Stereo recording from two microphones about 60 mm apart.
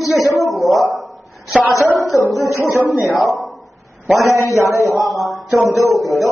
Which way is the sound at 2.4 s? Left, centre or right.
Left.